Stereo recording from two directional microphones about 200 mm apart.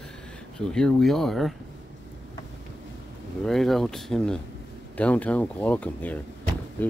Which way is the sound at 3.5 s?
Centre (ahead or behind).